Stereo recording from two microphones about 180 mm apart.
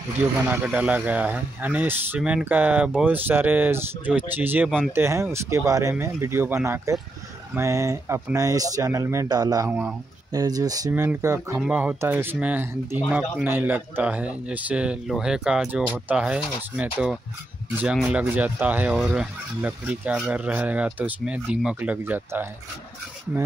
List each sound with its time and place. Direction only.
0.2 s speech: 10° right (ahead or behind)
9.7 s speech: 5° right (ahead or behind)
10.3 s speech: 20° right (ahead or behind)